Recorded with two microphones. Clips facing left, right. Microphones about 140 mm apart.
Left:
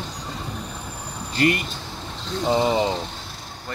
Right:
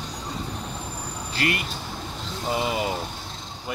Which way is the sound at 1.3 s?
40° left (ahead or behind).